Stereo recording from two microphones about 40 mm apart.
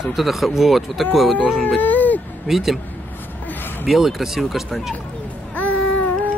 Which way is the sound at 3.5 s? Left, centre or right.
Left.